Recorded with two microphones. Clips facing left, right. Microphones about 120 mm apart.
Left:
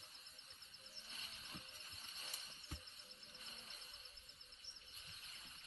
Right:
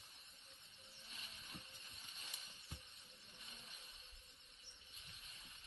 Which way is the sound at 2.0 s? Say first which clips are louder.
Left 2 dB; 35° left (ahead or behind).